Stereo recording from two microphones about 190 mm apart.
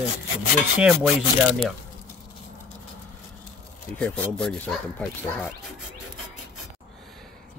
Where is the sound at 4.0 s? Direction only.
5° left (ahead or behind).